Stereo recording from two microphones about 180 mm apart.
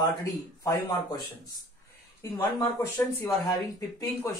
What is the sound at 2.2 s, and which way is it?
Speech, 15° left (ahead or behind).